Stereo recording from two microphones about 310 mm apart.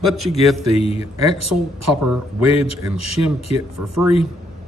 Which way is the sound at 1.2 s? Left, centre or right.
Right.